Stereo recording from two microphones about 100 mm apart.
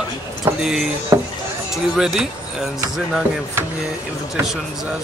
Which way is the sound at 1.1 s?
30° right (ahead or behind).